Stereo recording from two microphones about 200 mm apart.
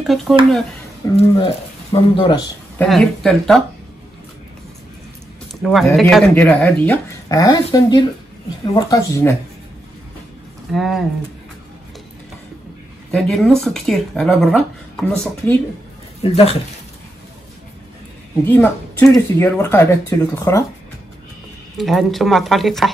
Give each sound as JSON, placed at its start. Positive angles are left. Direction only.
{"t": 0.0, "sound": "speech", "side_deg": 0}
{"t": 1.1, "sound": "speech", "side_deg": 30}
{"t": 2.8, "sound": "speech", "side_deg": 5}
{"t": 5.5, "sound": "speech", "side_deg": 0}
{"t": 7.2, "sound": "speech", "side_deg": 15}
{"t": 10.7, "sound": "speech", "side_deg": 0}
{"t": 13.1, "sound": "speech", "side_deg": 5}
{"t": 16.2, "sound": "speech", "side_deg": 30}
{"t": 18.4, "sound": "speech", "side_deg": 10}
{"t": 21.7, "sound": "speech", "side_deg": 0}